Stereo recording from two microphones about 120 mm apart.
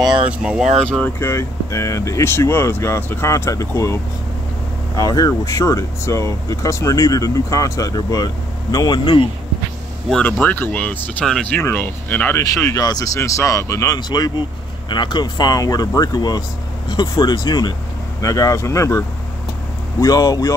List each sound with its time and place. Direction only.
0.4 s speech: 5° right (ahead or behind)
0.8 s speech: 10° left (ahead or behind)
1.2 s speech: 25° left (ahead or behind); by 9.3 s 45° left (ahead or behind)
10.0 s speech: 5° left (ahead or behind)
12.4 s speech: 25° left (ahead or behind)